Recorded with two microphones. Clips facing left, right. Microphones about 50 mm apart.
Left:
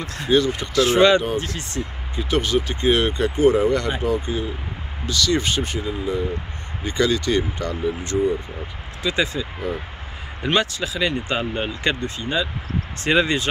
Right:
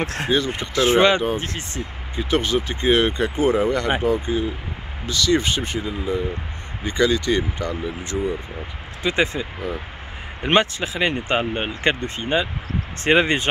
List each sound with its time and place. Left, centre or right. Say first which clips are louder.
0.0 s speech: right 5 dB; right
0.5 s speech: even; right
5.8 s speech: even; centre
6.8 s speech: right 1 dB; centre
9.0 s speech: right 1 dB; right